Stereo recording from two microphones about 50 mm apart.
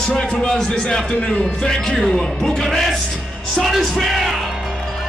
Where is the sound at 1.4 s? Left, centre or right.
Centre.